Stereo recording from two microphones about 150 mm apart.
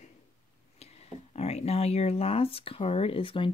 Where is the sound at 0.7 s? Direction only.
45° left (ahead or behind).